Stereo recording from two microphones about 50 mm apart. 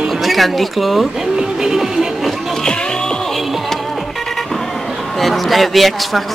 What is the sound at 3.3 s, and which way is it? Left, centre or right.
Music, centre.